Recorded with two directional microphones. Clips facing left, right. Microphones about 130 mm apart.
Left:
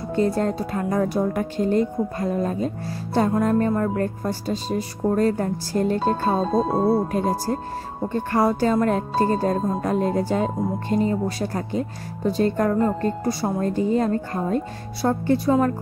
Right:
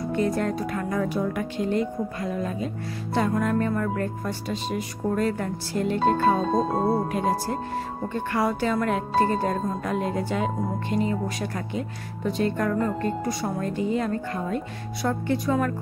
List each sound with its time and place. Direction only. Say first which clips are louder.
0.1 s speech: left 4 dB; 30° left (ahead or behind)